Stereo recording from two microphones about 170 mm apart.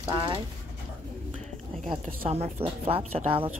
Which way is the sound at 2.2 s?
40° right (ahead or behind).